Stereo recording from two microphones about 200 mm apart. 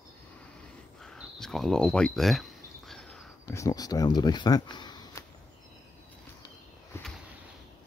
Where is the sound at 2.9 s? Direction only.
5° left (ahead or behind).